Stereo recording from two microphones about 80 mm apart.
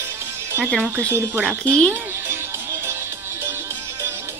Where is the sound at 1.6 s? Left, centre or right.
Centre.